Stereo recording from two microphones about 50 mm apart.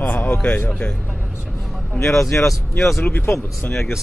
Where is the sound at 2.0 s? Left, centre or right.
Left.